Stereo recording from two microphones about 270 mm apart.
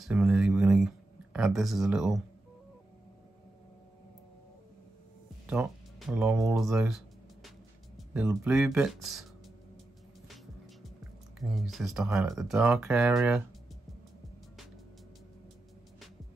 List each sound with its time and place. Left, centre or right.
0.0 s speech: centre
5.5 s speech: centre
8.1 s speech: centre
10.2 s music: centre
11.3 s speech: centre